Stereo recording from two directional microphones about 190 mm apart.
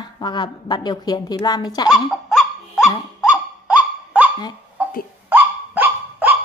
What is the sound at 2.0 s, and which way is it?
Dog, centre (ahead or behind).